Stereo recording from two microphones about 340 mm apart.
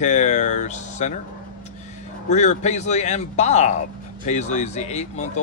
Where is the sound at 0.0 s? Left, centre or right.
Centre.